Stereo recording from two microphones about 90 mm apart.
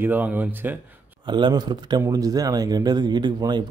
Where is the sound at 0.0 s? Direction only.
20° right (ahead or behind).